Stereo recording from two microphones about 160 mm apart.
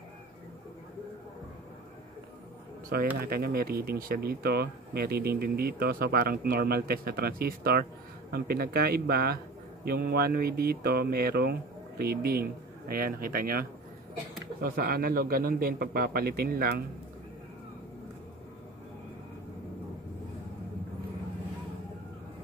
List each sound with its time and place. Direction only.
3.2 s speech: 75° right (ahead or behind)